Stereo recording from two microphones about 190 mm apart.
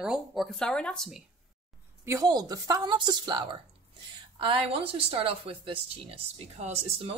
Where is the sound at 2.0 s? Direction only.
20° right (ahead or behind).